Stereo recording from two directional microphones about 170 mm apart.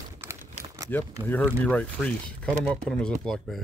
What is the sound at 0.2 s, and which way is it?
Crumpling, 15° right (ahead or behind).